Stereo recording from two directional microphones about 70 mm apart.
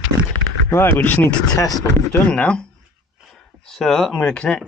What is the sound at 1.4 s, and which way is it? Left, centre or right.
Speech, left.